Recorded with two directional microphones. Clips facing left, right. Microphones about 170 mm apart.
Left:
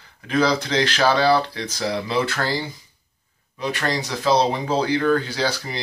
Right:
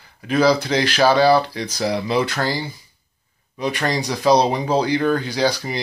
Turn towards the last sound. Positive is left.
turn(degrees=-15)  # may be behind; listen again after turning